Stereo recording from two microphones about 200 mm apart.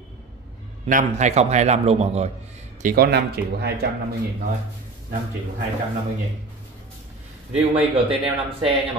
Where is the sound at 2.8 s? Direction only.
50° right (ahead or behind).